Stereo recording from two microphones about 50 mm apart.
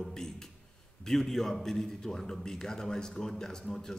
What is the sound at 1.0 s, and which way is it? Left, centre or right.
A man's voice, centre.